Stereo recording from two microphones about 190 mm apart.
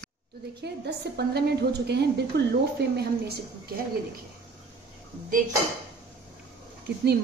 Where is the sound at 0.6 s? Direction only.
60° right (ahead or behind).